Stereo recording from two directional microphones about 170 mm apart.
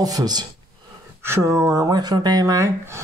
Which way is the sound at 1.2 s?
15° right (ahead or behind).